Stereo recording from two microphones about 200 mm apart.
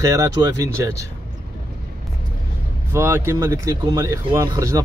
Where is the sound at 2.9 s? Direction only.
10° right (ahead or behind).